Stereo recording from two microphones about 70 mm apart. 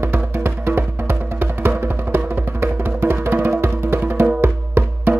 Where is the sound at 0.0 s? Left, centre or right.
Right.